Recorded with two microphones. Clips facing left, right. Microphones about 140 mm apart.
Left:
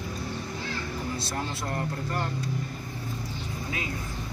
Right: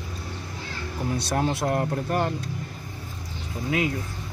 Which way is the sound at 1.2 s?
70° right (ahead or behind).